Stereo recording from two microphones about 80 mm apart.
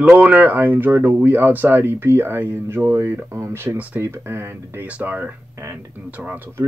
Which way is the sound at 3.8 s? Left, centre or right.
Centre.